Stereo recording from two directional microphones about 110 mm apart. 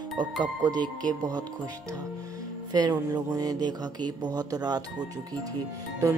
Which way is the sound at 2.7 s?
35° right (ahead or behind).